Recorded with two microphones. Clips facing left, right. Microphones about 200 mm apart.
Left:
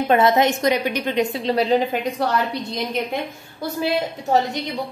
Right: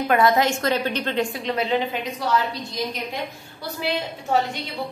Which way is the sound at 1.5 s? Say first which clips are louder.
Left 6 dB; 35° left (ahead or behind).